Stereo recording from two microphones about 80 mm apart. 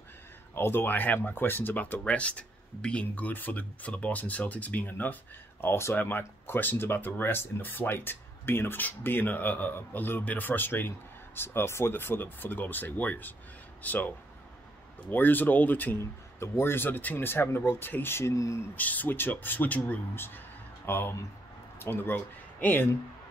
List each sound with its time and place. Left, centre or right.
0.6 s speech: left
16.0 s speech: left
18.8 s speech: left